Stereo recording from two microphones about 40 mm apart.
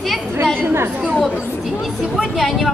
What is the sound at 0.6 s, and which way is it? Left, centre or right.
Chatter, right.